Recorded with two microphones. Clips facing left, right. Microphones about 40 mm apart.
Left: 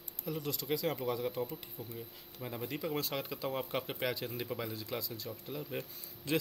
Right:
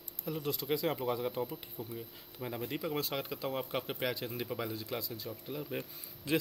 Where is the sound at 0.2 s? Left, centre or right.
Centre.